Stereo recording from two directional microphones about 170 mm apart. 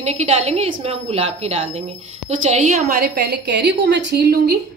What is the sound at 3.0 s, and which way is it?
A woman's voice, 70° right (ahead or behind).